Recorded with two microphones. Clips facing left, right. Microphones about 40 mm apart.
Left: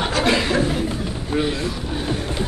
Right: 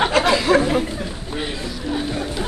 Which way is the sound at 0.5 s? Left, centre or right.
Right.